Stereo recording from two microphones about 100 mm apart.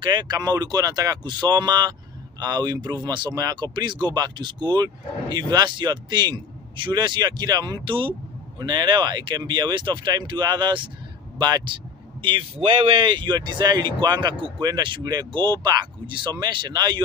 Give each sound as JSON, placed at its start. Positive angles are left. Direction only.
{"t": 0.0, "sound": "speech", "side_deg": -45}
{"t": 11.3, "sound": "a sound", "side_deg": -50}
{"t": 12.5, "sound": "speech", "side_deg": -60}